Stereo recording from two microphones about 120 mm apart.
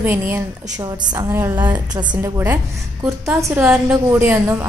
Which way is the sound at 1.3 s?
20° right (ahead or behind).